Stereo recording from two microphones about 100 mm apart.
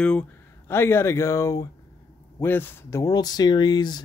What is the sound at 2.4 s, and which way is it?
Speech, 20° left (ahead or behind).